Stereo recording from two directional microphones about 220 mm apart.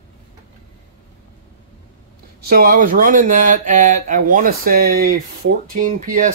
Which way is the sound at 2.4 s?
45° right (ahead or behind).